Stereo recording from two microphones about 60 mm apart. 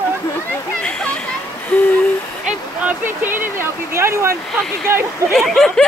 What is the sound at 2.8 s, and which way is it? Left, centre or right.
Speech, right.